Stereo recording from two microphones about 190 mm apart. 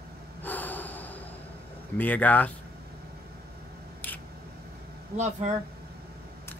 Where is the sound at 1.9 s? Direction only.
10° left (ahead or behind).